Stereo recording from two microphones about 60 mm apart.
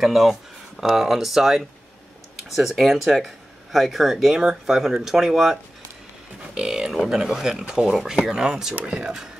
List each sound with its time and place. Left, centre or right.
0.0 s speech: centre
6.6 s speech: centre
8.8 s speech: right